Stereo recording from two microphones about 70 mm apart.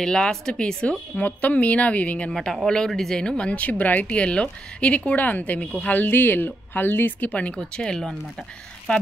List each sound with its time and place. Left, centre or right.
0.0 s speech: centre
2.3 s speech: centre